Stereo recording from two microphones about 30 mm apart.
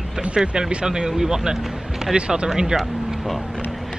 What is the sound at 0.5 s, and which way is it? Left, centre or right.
Speech, right.